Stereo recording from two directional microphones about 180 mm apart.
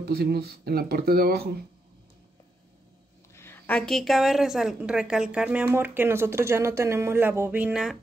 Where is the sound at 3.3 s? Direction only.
10° left (ahead or behind).